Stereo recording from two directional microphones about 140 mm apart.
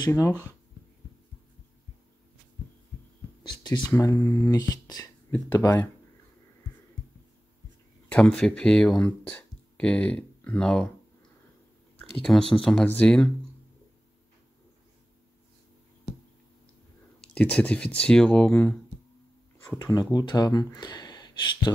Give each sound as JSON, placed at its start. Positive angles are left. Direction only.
{"t": 0.1, "sound": "speech", "side_deg": 20}
{"t": 3.4, "sound": "speech", "side_deg": 30}
{"t": 3.9, "sound": "speech", "side_deg": 15}
{"t": 8.1, "sound": "speech", "side_deg": 5}
{"t": 12.2, "sound": "speech", "side_deg": 5}
{"t": 17.2, "sound": "speech", "side_deg": 10}
{"t": 19.8, "sound": "speech", "side_deg": 30}